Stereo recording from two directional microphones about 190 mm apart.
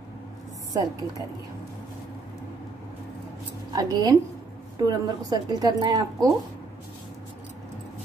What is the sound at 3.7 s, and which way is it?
A woman's voice, 20° right (ahead or behind).